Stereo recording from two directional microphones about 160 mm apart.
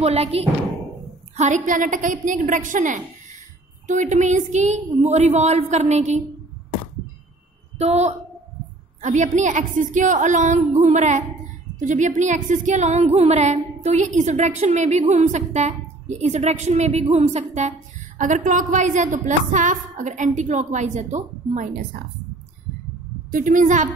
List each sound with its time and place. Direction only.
0.0 s speech: 40° right (ahead or behind)
1.3 s female singing: 50° right (ahead or behind)
7.8 s female singing: 45° right (ahead or behind)
23.3 s female singing: 55° right (ahead or behind)